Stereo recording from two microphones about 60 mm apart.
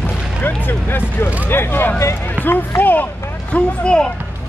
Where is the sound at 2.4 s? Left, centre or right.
Left.